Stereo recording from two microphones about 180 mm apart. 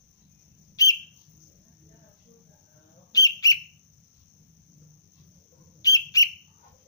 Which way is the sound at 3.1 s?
20° left (ahead or behind).